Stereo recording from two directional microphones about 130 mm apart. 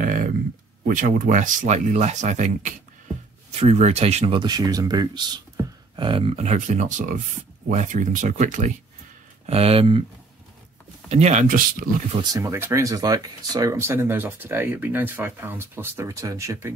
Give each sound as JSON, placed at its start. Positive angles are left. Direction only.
{"t": 0.0, "sound": "a sound", "side_deg": -90}
{"t": 0.8, "sound": "speech", "side_deg": -90}
{"t": 3.5, "sound": "speech", "side_deg": -55}
{"t": 4.4, "sound": "speech", "side_deg": -30}
{"t": 9.5, "sound": "speech", "side_deg": -50}
{"t": 11.1, "sound": "speech", "side_deg": -55}
{"t": 12.2, "sound": "speech", "side_deg": -30}